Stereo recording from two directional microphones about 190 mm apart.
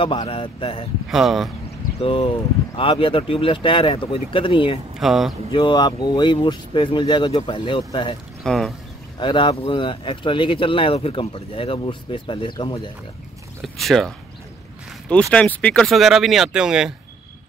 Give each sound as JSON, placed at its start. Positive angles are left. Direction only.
{"t": 0.0, "sound": "speech", "side_deg": 30}
{"t": 1.1, "sound": "speech", "side_deg": 0}
{"t": 2.0, "sound": "speech", "side_deg": 30}
{"t": 4.9, "sound": "speech", "side_deg": 0}
{"t": 5.5, "sound": "speech", "side_deg": 25}
{"t": 8.5, "sound": "speech", "side_deg": 0}
{"t": 9.2, "sound": "speech", "side_deg": 25}
{"t": 13.6, "sound": "speech", "side_deg": 0}
{"t": 14.9, "sound": "a sound", "side_deg": 5}
{"t": 15.3, "sound": "speech", "side_deg": 5}